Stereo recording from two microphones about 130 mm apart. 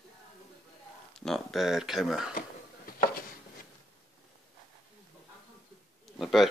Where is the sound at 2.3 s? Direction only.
90° left.